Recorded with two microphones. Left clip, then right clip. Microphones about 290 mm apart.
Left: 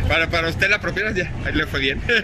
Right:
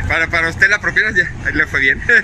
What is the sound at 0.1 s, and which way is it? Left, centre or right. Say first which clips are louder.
Speech: right 4 dB; centre.